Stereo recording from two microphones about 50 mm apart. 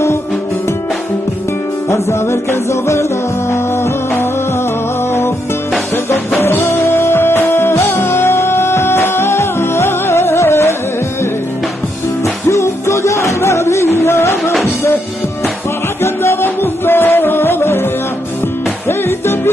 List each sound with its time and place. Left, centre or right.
1.9 s music: left
6.0 s music: left
12.4 s music: left
16.0 s music: left
16.4 s music: left
18.9 s music: left